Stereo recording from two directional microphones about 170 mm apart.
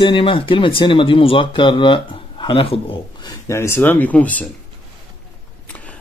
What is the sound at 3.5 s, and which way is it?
Speech, 15° left (ahead or behind).